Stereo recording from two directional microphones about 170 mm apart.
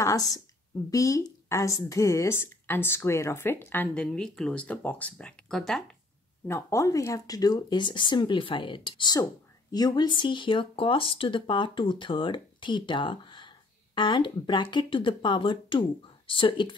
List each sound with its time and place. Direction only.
0.0 s speech: 20° left (ahead or behind); by 5.9 s centre (ahead or behind)
6.4 s speech: 15° left (ahead or behind)